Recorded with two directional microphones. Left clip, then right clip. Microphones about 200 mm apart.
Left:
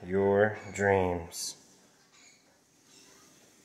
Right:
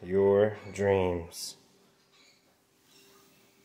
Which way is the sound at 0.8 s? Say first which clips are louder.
Even; 25° right (ahead or behind).